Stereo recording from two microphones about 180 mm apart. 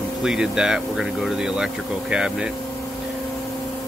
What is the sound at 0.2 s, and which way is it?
Speech, 5° right (ahead or behind).